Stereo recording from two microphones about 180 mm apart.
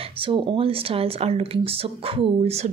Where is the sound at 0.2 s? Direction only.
30° right (ahead or behind).